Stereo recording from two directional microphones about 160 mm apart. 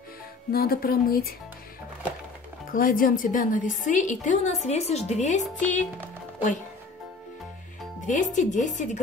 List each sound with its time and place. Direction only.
0.5 s speech: 70° left (ahead or behind)
2.7 s a woman's voice: 60° left (ahead or behind)
8.1 s a woman's voice: 50° left (ahead or behind)